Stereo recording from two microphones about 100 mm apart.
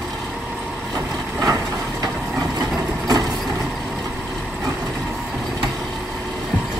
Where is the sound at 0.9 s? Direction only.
35° right (ahead or behind).